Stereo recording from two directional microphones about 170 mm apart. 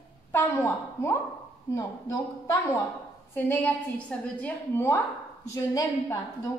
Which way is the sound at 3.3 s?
10° left (ahead or behind).